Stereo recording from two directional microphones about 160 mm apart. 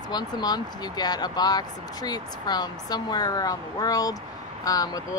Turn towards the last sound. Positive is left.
turn(degrees=25)  # may be behind; listen again after turning